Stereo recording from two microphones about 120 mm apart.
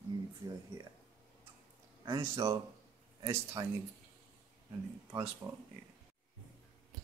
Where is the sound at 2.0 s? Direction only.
30° right (ahead or behind).